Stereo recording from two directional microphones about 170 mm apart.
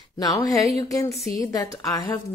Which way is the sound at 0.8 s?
20° left (ahead or behind).